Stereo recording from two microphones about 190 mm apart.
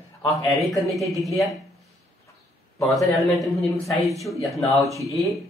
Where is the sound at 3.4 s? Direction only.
Centre (ahead or behind).